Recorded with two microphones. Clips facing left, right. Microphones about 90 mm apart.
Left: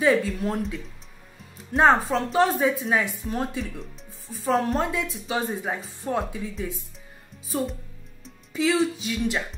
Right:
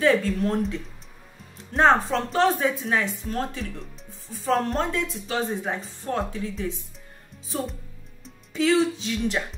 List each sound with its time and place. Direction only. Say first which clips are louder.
0.0 s speech: right 1 dB; 5° left (ahead or behind)